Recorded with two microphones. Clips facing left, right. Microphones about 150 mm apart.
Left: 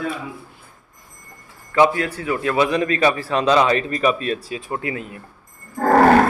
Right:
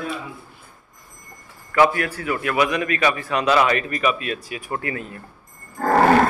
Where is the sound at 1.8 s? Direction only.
20° left (ahead or behind).